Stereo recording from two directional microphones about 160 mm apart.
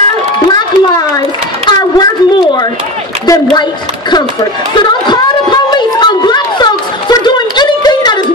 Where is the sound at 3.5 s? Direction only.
25° left (ahead or behind).